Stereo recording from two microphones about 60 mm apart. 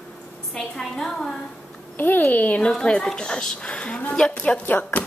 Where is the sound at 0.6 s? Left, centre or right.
Centre.